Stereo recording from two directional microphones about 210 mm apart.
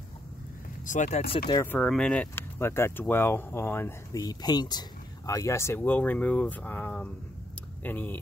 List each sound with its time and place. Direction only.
0.8 s speech: 35° left (ahead or behind)
1.5 s speech: 10° left (ahead or behind)